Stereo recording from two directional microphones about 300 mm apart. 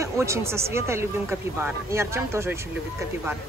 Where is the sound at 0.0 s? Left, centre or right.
Centre.